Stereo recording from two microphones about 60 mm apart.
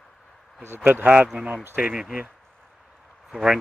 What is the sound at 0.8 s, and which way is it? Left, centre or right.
Speech, right.